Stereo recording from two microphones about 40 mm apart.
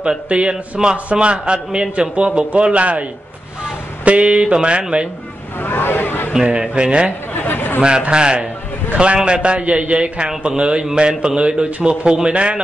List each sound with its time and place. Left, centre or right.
0.3 s a man's voice: right
5.6 s vehicle: left
6.5 s a man's voice: right
7.3 s chatter: left
8.1 s a man's voice: right